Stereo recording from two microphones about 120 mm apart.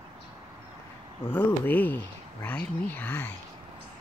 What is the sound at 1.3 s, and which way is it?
Speech, 15° left (ahead or behind).